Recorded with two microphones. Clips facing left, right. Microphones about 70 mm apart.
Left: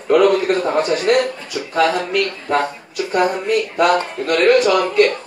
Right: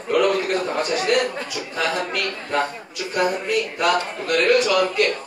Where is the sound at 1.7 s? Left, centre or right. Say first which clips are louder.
Left 8 dB; left.